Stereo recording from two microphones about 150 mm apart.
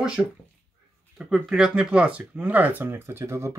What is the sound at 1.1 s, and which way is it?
Speech, 5° right (ahead or behind).